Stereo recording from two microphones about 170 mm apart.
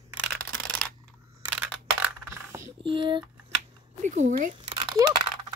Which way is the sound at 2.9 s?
30° right (ahead or behind).